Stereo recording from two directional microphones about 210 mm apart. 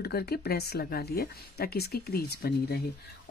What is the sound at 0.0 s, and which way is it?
Speech, 50° left (ahead or behind).